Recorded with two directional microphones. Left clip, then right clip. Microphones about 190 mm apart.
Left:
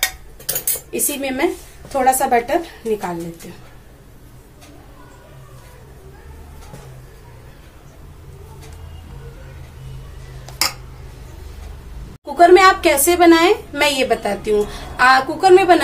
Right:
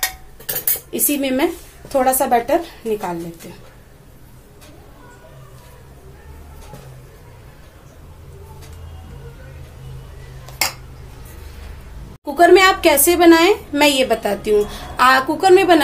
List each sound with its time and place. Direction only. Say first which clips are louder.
0.9 s a woman's voice: right 3 dB; 30° right (ahead or behind)
12.4 s a woman's voice: left 1 dB; 30° right (ahead or behind)